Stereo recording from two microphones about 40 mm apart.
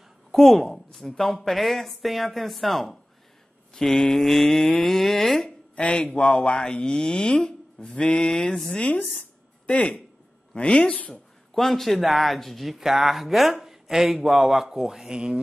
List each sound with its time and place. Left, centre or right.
0.3 s a woman's voice: centre
3.7 s a sound: centre
6.1 s speech: left
8.6 s speech: left
11.5 s a sound: centre
12.0 s a woman's voice: centre